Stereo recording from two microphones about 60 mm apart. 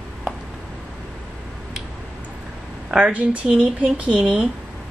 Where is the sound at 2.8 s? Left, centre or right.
Right.